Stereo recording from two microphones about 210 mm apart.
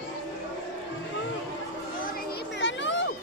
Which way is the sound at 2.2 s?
55° left (ahead or behind).